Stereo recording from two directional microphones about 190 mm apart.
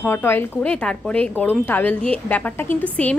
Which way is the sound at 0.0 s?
10° left (ahead or behind).